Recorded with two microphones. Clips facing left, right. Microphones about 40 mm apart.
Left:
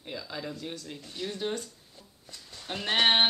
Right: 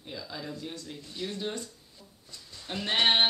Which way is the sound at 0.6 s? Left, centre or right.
Centre.